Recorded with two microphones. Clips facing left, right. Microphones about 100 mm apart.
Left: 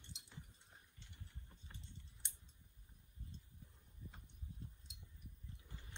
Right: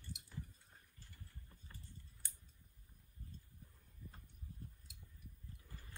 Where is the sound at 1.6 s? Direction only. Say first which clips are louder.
Even; 20° left (ahead or behind).